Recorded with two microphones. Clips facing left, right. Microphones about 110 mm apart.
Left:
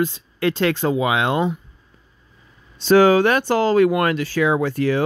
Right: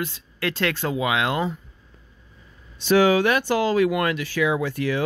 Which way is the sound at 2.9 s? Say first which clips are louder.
Left 4 dB; 45° left (ahead or behind).